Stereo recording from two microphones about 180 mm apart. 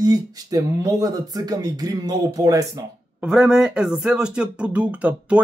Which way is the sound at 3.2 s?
5° right (ahead or behind).